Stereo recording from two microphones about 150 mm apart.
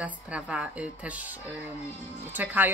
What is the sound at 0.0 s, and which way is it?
A woman's voice, 10° right (ahead or behind).